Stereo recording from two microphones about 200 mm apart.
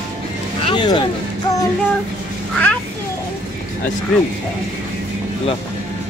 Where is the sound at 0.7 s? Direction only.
25° left (ahead or behind).